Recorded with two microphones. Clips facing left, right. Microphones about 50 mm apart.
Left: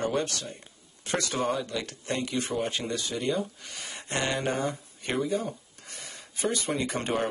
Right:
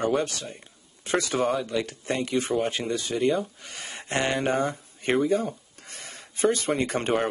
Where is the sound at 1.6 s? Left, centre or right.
Centre.